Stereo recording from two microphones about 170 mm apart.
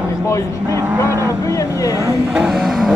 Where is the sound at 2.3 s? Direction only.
5° right (ahead or behind).